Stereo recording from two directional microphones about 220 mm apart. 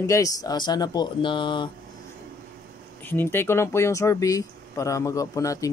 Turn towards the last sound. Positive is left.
turn(degrees=15)  # may be behind; listen again after turning